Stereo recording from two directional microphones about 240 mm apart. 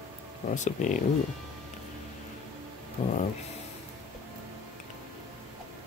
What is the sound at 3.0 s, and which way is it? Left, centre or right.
Speech, left.